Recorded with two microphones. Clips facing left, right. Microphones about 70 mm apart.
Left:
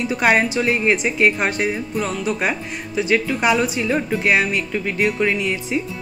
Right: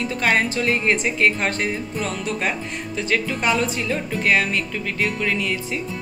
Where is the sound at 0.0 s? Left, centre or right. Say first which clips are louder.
Left 3 dB; centre.